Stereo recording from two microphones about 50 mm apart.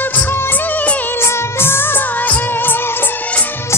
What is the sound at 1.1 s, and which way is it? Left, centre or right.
Music of bollywood, left.